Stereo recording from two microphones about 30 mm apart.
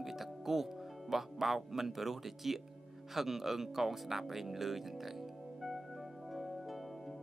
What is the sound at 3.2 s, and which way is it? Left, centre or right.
Music, centre.